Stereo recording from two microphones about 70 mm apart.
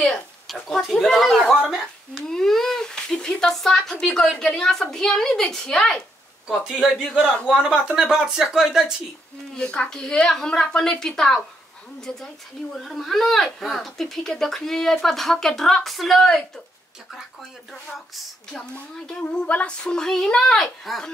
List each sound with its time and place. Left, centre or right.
0.0 s speech: centre
1.6 s speech: centre
2.1 s a woman's voice: centre
6.4 s speech: centre
9.6 s a woman's voice: centre
12.7 s speech: centre
19.4 s speech: left
19.8 s a woman's voice: centre